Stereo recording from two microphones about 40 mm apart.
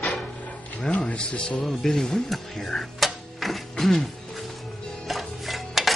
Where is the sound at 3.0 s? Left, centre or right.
Centre.